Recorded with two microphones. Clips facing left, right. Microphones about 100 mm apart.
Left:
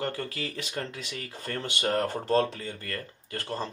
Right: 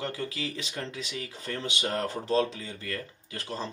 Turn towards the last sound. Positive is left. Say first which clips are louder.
# left 2 dB
turn(degrees=45)  # may be behind; listen again after turning